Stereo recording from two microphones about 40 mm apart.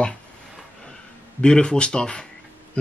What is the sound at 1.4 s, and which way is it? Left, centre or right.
Speech, left.